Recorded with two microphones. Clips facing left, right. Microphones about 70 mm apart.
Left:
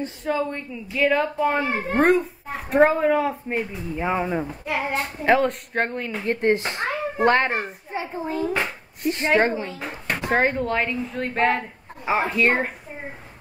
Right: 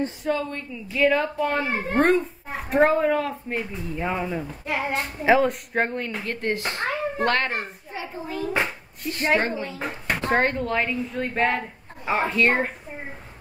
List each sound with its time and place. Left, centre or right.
0.3 s a woman's voice: centre
0.8 s a child's voice: centre
4.6 s a child's voice: centre
6.2 s speech: left
7.9 s a sound: left
9.0 s speech: left
10.3 s a child's voice: centre